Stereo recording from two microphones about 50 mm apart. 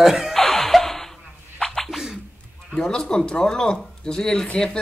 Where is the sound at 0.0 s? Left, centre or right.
Centre.